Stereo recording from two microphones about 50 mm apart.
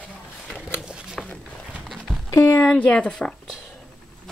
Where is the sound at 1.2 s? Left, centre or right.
Centre.